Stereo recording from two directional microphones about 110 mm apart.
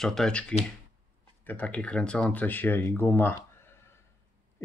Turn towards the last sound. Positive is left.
turn(degrees=20)  # may be behind; listen again after turning